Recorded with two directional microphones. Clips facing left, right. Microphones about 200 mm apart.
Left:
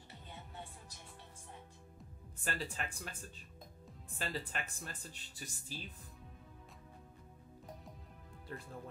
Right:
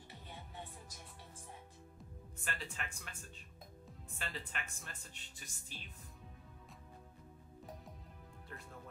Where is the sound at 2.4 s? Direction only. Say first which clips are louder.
Left 5 dB; 35° left (ahead or behind).